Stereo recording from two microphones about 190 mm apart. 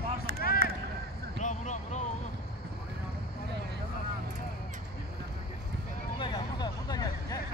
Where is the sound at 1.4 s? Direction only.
40° left (ahead or behind).